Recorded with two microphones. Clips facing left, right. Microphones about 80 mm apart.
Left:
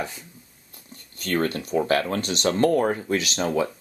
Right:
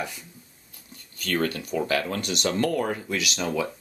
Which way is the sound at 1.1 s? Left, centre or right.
Left.